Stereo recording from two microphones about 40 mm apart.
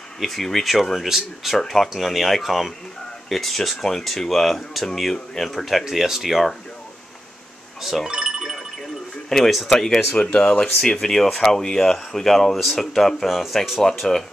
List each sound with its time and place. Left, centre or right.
0.2 s speech: centre
5.9 s speech: centre
8.1 s music: right
9.3 s speech: centre
14.0 s speech: centre